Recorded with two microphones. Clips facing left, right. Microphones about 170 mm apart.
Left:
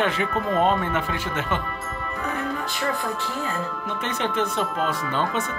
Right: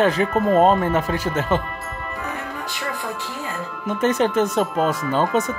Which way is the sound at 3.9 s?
45° right (ahead or behind).